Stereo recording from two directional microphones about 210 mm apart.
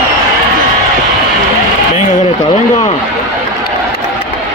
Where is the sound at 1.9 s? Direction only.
30° left (ahead or behind).